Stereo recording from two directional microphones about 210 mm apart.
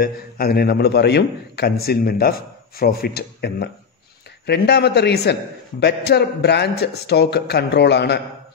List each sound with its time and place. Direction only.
0.0 s a man's voice: 45° left (ahead or behind)